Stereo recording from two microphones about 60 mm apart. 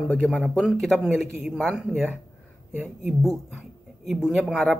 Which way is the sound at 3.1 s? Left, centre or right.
Centre.